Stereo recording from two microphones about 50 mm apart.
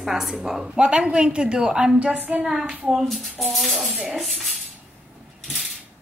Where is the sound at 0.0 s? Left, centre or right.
Centre.